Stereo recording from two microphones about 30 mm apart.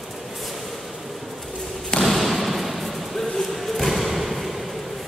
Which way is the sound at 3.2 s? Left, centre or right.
Centre.